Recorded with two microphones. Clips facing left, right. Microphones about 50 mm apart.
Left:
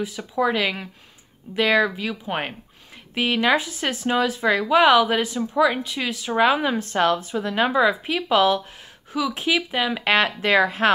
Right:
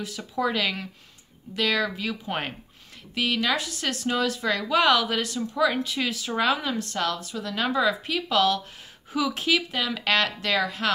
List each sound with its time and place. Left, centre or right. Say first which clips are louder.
0.0 s speech: left 5 dB; centre
1.9 s speech: left 3 dB; centre
3.2 s speech: left 5 dB; left; by 6.3 s centre
6.3 s speech: left 6 dB; left
9.1 s speech: left 2 dB; centre; by 10.9 s left